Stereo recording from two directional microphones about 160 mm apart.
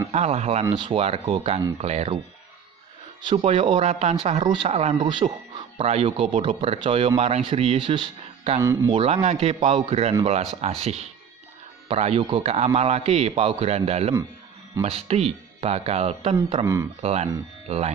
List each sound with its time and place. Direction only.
0.1 s speech: 40° right (ahead or behind)
0.7 s speech: 30° right (ahead or behind)
3.3 s speech: 35° right (ahead or behind)
3.8 s speech: 45° right (ahead or behind)
4.4 s speech: 30° right (ahead or behind)
4.6 s speech: 45° right (ahead or behind)
4.9 s speech: 30° right (ahead or behind)
8.5 s speech: 15° right (ahead or behind)
8.9 s speech: 40° right (ahead or behind)
12.5 s speech: 40° right (ahead or behind)
16.6 s speech: 15° right (ahead or behind)
17.0 s speech: 40° right (ahead or behind)